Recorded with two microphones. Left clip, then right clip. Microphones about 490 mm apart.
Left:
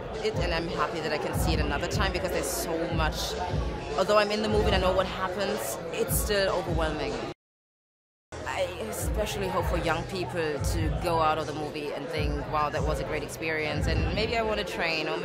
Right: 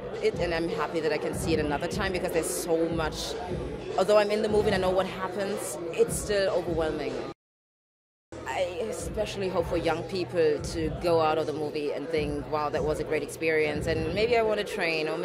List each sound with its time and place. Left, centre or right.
0.2 s speech: right
4.0 s speech: right
9.2 s speech: right